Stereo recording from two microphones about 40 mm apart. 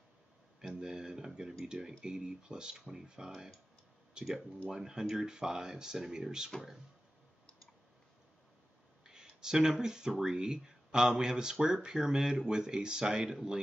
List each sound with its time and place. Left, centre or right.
0.6 s speech: centre
9.0 s speech: centre